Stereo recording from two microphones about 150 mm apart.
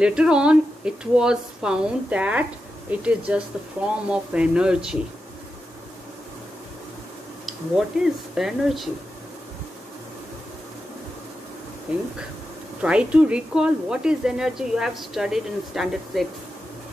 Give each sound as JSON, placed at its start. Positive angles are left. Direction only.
{"t": 0.0, "sound": "speech", "side_deg": -5}
{"t": 7.4, "sound": "speech", "side_deg": -5}
{"t": 11.9, "sound": "speech", "side_deg": -5}